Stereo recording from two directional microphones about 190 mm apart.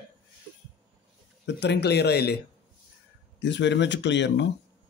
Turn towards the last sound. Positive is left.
turn(degrees=70)  # may be behind; listen again after turning